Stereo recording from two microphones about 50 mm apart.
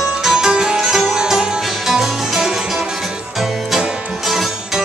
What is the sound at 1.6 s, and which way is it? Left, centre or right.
Music, centre.